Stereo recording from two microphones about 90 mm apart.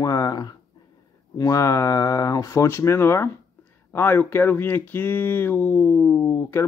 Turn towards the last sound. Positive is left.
turn(degrees=25)  # may be behind; listen again after turning